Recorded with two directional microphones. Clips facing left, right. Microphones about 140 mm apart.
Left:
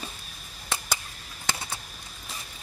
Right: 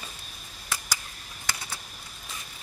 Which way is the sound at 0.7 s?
25° left (ahead or behind).